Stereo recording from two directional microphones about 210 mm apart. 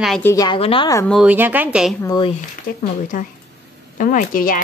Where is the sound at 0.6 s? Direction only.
25° left (ahead or behind).